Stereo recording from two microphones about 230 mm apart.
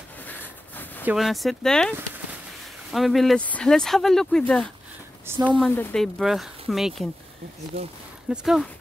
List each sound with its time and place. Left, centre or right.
1.0 s speech: centre
5.2 s speech: centre
5.7 s speech: centre
7.7 s speech: right
8.3 s speech: centre